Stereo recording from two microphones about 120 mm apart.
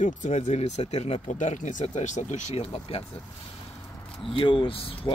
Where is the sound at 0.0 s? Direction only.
90° left; by 3.0 s 55° left (ahead or behind).